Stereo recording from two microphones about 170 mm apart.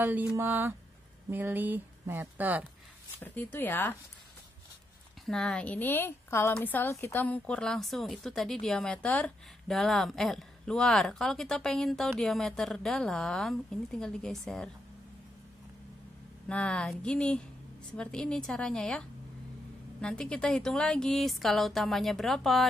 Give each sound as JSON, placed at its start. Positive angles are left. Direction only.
{"t": 0.0, "sound": "speech", "side_deg": -10}
{"t": 3.2, "sound": "speech", "side_deg": 10}
{"t": 5.2, "sound": "a woman's voice", "side_deg": 0}
{"t": 16.4, "sound": "a woman's voice", "side_deg": 5}